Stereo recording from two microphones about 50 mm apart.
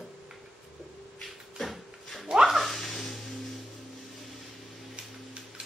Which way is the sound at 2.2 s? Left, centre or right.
Centre.